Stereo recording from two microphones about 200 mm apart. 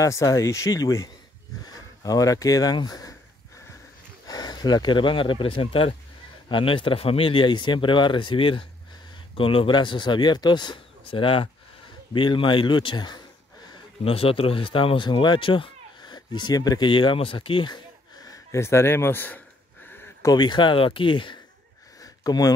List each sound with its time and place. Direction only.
0.0 s speech: 15° left (ahead or behind)
4.3 s speech: 20° left (ahead or behind)
22.0 s a sound: 20° left (ahead or behind)